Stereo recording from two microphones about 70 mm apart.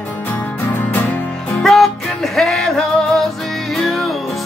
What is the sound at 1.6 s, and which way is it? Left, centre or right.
Music, centre.